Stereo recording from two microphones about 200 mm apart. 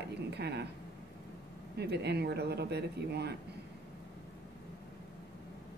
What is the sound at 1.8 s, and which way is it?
Speech, 55° right (ahead or behind).